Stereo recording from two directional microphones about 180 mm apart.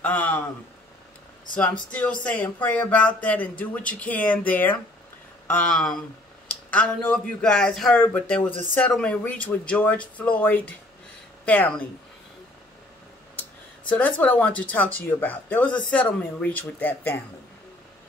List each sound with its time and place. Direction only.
0.0 s speech: 10° left (ahead or behind)
1.9 s speech: 5° left (ahead or behind)
13.4 s speech: 10° left (ahead or behind)